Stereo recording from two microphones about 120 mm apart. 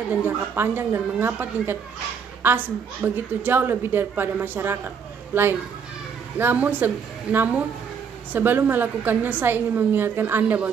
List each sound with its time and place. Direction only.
0.1 s a woman's voice: 15° right (ahead or behind)